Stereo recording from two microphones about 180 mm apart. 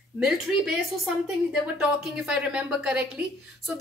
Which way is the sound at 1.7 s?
5° right (ahead or behind).